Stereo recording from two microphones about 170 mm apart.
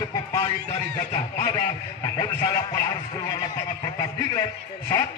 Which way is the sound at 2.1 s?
25° left (ahead or behind).